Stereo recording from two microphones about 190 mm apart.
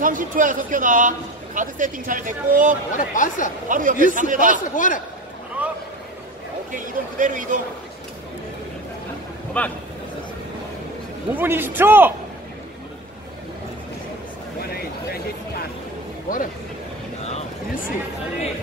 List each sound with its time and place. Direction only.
0.0 s a man's voice: 45° right (ahead or behind)
3.0 s speech: 45° left (ahead or behind)
3.6 s a man's voice: 45° right (ahead or behind)
4.7 s speech: 45° left (ahead or behind)
5.6 s a sound: 10° right (ahead or behind)
6.7 s a man's voice: 45° right (ahead or behind)
9.6 s a man's voice: 5° left (ahead or behind)
11.3 s a man's voice: 10° right (ahead or behind)
14.6 s a sound: 55° left (ahead or behind)
17.2 s a sound: 35° left (ahead or behind)